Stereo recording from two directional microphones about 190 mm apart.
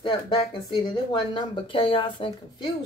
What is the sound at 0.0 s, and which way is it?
Speech, 25° left (ahead or behind).